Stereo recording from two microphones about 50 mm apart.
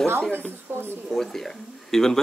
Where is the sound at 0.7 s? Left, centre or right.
Right.